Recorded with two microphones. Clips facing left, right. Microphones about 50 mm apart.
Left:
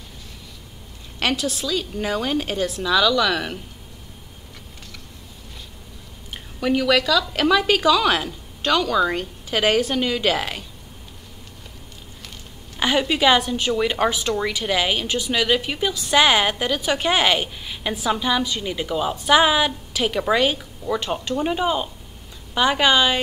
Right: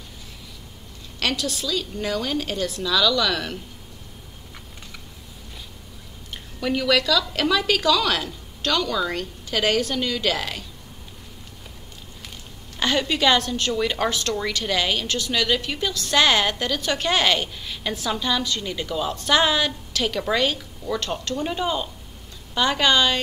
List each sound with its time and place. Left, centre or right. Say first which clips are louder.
1.2 s a woman's voice: left 2 dB; centre
6.3 s a woman's voice: left 4 dB; centre
12.7 s a woman's voice: left 2 dB; centre